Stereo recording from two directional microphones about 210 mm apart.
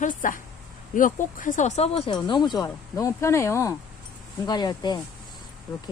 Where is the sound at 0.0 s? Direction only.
40° left (ahead or behind); by 5.0 s 20° left (ahead or behind).